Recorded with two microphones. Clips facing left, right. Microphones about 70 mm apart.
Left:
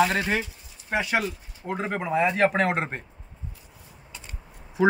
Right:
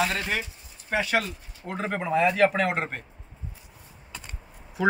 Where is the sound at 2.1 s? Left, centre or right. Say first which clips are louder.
Even; left.